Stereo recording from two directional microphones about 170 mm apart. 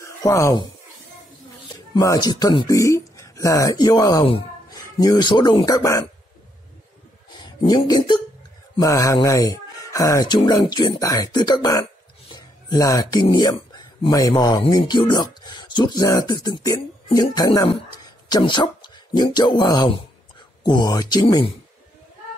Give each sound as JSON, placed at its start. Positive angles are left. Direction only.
{"t": 0.0, "sound": "speech", "side_deg": 20}
{"t": 2.0, "sound": "speech", "side_deg": 25}
{"t": 7.2, "sound": "a sound", "side_deg": 25}
{"t": 8.7, "sound": "speech", "side_deg": 20}